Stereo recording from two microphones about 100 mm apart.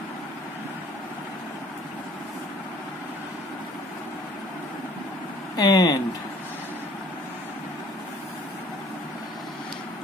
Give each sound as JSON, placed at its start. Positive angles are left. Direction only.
{"t": 5.6, "sound": "speech", "side_deg": 40}